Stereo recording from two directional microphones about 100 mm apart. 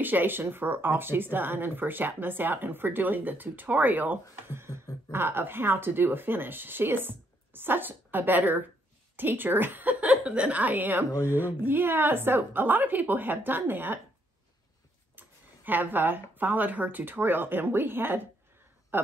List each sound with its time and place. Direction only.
0.0 s a woman's voice: 20° right (ahead or behind)
15.1 s speech: 20° right (ahead or behind)